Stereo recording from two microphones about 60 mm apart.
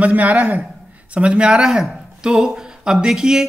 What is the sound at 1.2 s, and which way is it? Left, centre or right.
Speech, centre.